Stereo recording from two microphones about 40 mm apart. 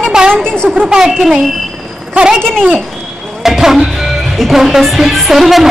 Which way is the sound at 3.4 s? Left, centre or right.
Centre.